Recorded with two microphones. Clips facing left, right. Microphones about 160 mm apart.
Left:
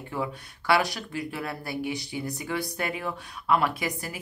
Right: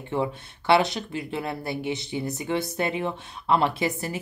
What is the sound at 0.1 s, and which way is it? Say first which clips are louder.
Speech: right 5 dB; 25° right (ahead or behind).